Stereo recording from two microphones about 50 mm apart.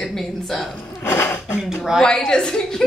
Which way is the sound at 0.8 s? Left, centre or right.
Left.